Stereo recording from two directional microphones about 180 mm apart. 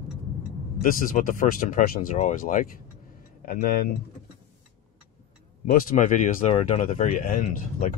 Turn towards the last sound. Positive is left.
turn(degrees=50)  # may be behind; listen again after turning